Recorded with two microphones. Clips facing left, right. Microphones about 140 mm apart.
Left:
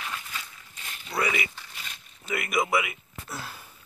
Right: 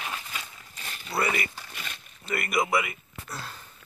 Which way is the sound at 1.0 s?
5° right (ahead or behind).